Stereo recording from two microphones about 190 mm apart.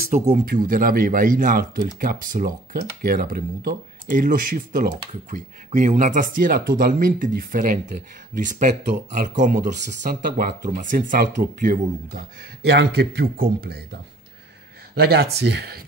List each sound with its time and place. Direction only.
0.1 s speech: 40° right (ahead or behind)
12.6 s speech: 60° right (ahead or behind)
15.0 s speech: 60° right (ahead or behind)